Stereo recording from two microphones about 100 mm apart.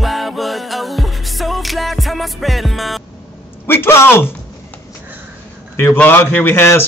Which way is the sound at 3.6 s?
20° left (ahead or behind).